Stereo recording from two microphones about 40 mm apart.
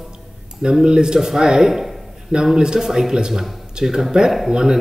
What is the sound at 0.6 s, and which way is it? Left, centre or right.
Speech, right.